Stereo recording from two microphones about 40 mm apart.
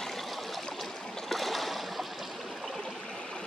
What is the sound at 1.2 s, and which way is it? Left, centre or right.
Stream, centre.